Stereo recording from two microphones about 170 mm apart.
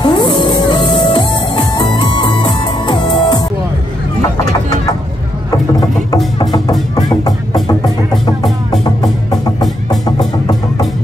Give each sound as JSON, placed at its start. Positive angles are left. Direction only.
{"t": 0.0, "sound": "music", "side_deg": 25}
{"t": 6.5, "sound": "music", "side_deg": 20}
{"t": 9.0, "sound": "music", "side_deg": 20}